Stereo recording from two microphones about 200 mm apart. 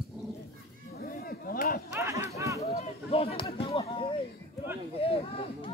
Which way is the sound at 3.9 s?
25° left (ahead or behind).